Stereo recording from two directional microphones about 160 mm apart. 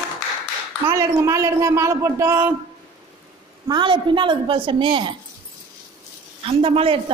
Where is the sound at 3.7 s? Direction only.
30° right (ahead or behind).